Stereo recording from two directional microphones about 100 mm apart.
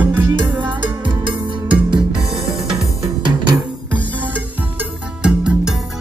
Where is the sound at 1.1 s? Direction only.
50° right (ahead or behind).